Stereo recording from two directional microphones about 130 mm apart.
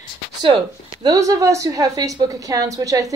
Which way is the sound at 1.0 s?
25° right (ahead or behind).